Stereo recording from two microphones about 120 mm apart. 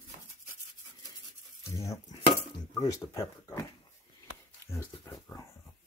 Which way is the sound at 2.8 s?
25° left (ahead or behind).